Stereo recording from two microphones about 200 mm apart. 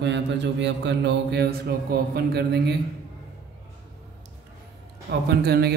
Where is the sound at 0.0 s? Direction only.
60° right (ahead or behind).